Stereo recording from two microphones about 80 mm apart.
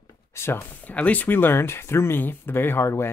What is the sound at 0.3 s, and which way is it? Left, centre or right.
Speech, left.